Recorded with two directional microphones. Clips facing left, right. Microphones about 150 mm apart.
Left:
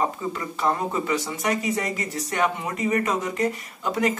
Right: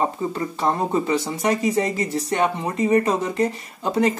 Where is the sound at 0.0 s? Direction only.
30° right (ahead or behind).